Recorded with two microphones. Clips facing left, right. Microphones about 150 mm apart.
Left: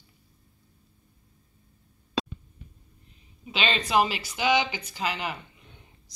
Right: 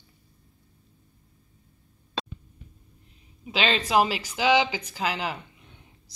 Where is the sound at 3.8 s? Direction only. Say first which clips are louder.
Left 1 dB; 10° right (ahead or behind).